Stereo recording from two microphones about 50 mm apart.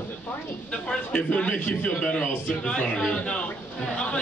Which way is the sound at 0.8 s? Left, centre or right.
Centre.